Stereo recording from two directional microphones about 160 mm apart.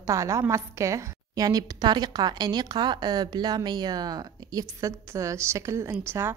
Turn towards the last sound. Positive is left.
turn(degrees=-15)  # may be behind; listen again after turning